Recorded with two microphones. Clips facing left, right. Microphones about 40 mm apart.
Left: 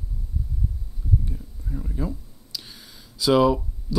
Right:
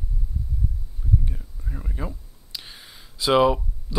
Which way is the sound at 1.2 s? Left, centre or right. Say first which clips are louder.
Left 1 dB; right.